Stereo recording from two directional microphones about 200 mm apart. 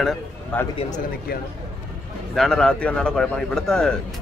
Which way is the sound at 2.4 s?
5° left (ahead or behind).